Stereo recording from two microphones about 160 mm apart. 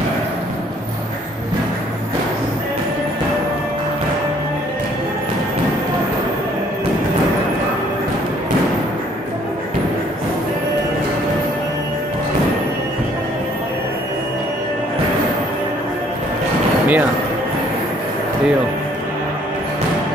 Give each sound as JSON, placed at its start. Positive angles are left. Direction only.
{"t": 16.8, "sound": "music", "side_deg": -10}